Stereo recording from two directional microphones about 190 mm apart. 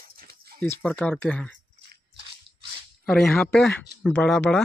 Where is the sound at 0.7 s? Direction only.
10° left (ahead or behind).